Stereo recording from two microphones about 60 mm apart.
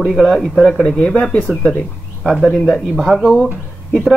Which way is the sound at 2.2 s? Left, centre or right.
Centre.